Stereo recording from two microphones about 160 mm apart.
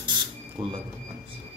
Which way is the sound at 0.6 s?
30° right (ahead or behind).